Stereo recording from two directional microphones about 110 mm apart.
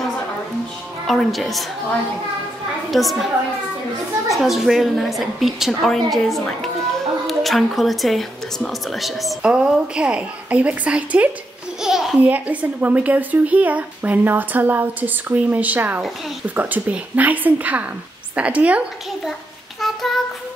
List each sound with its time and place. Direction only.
1.0 s a woman's voice: centre (ahead or behind)
2.9 s a woman's voice: centre (ahead or behind)
4.3 s a woman's voice: centre (ahead or behind)
11.8 s babbling: 5° right (ahead or behind)
12.2 s speech: 15° right (ahead or behind)
19.8 s child singing: centre (ahead or behind)